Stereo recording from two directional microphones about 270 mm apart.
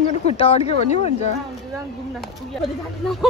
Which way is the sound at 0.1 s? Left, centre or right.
Left.